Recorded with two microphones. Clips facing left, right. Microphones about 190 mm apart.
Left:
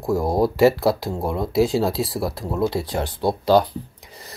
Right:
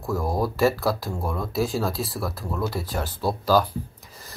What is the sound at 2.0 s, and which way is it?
Speech, 15° left (ahead or behind).